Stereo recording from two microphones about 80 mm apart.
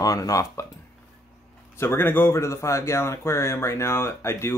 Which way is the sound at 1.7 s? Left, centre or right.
Left.